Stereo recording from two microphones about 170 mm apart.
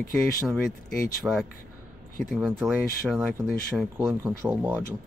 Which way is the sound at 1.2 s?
10° right (ahead or behind).